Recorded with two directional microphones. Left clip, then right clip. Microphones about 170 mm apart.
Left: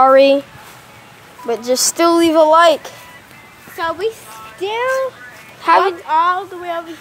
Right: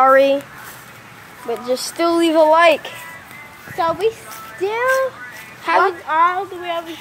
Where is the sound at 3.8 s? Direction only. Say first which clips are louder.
Right 2 dB; 50° left (ahead or behind).